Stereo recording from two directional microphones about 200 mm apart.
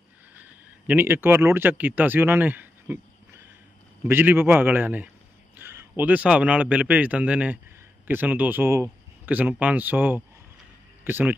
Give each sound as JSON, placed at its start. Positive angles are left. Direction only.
{"t": 0.3, "sound": "speech", "side_deg": -10}